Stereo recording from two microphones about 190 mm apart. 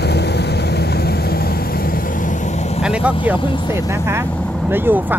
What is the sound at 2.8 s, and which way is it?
Vehicle, 5° right (ahead or behind).